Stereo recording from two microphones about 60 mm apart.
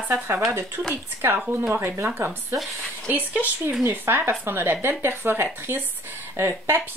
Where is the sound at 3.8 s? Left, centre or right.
Right.